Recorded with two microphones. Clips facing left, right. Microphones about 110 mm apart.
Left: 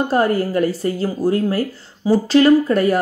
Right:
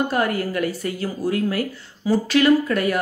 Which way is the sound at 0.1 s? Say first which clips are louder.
Left 5 dB; 35° left (ahead or behind).